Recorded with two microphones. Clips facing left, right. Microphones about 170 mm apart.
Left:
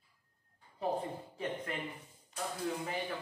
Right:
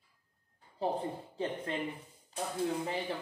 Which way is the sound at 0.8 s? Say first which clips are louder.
Right 2 dB; 30° right (ahead or behind).